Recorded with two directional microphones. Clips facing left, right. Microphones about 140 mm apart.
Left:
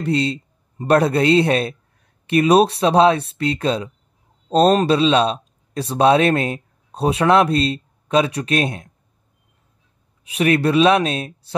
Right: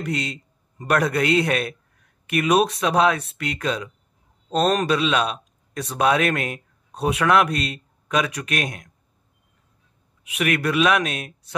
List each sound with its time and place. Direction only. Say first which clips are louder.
0.0 s a man's voice: left 7 dB; 30° left (ahead or behind)
10.2 s speech: left 6 dB; 30° left (ahead or behind)